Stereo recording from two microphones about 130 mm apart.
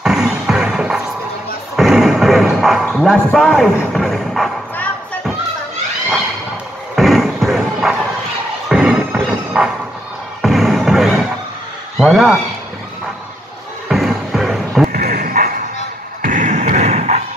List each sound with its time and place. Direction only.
0.0 s music: 5° right (ahead or behind)
2.8 s speech: centre (ahead or behind)
7.0 s thump: centre (ahead or behind)
8.6 s music: 5° right (ahead or behind)
12.0 s speech: 5° right (ahead or behind)
13.8 s music: centre (ahead or behind)
14.9 s a sound: 90° right; by 17.2 s 60° right (ahead or behind)